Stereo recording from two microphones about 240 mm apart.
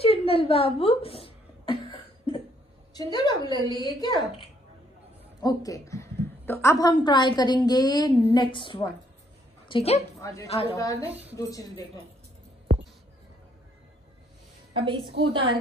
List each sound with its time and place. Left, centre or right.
0.0 s a sound: left
2.9 s a woman's voice: centre
10.2 s a woman's voice: centre
10.5 s a woman's voice: left
10.8 s a woman's voice: centre
11.1 s a woman's voice: centre
11.3 s a woman's voice: centre
14.7 s a woman's voice: right